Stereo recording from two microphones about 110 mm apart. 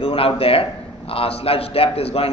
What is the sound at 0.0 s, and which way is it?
A man's voice, 60° left (ahead or behind).